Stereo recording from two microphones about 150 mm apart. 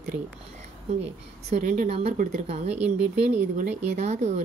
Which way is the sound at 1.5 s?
60° right (ahead or behind).